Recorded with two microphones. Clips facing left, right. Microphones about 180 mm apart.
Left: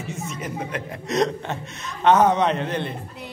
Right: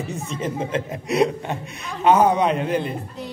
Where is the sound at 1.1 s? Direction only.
10° right (ahead or behind).